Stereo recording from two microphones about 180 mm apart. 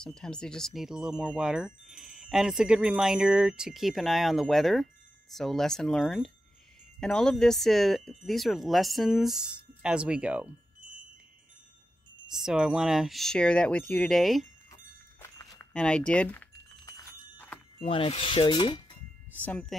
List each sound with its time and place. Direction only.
0.0 s speech: 5° left (ahead or behind)
12.3 s speech: 5° right (ahead or behind)
14.7 s wind chime: 15° left (ahead or behind)
16.1 s speech: 10° left (ahead or behind)
17.7 s speech: 30° left (ahead or behind)
19.4 s speech: 5° left (ahead or behind)